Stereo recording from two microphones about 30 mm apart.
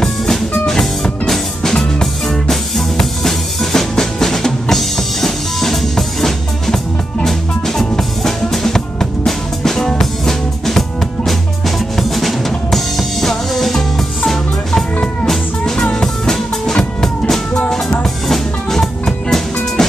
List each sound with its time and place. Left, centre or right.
0.0 s music: centre
2.5 s drum kit: centre
7.2 s music: centre
12.0 s drum kit: centre
15.2 s music: centre
18.3 s music: centre